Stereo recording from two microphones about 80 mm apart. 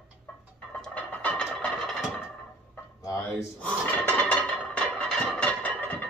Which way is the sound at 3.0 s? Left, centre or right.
Left.